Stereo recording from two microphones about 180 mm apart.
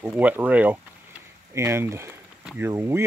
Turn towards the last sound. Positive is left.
turn(degrees=-15)  # may be behind; listen again after turning